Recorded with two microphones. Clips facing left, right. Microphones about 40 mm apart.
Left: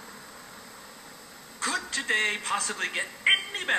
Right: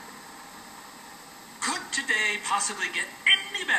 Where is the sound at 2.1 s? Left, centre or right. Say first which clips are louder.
Right 1 dB; centre.